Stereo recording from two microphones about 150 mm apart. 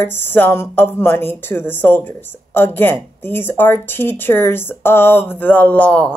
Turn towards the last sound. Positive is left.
turn(degrees=10)  # may be behind; listen again after turning